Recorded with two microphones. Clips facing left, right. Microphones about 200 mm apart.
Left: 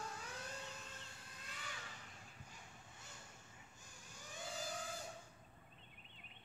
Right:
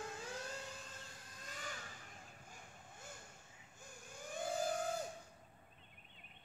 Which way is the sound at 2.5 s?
50° right (ahead or behind).